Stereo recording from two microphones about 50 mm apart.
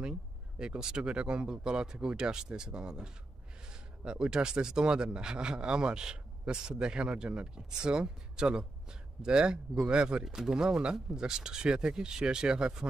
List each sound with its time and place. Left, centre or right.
0.6 s speech: centre